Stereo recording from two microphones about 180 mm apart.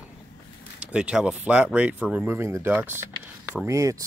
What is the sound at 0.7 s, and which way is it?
Speech, 5° right (ahead or behind).